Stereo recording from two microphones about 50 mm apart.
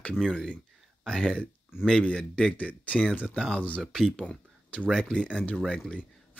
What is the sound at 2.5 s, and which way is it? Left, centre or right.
Speech, left.